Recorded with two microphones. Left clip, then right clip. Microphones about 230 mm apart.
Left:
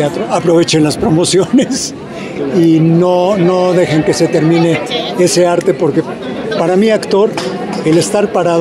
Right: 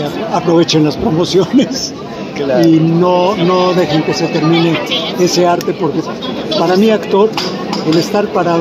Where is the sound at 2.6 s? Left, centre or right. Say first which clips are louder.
Left 2 dB; left.